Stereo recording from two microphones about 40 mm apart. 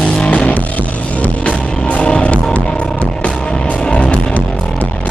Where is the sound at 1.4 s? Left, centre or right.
Left.